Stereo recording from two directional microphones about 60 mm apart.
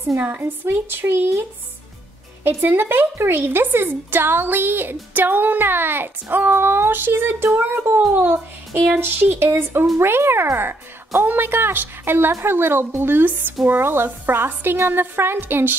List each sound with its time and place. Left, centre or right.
0.2 s a woman's voice: right
2.4 s a woman's voice: right